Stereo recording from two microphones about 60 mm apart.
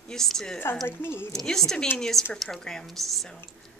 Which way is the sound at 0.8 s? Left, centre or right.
Left.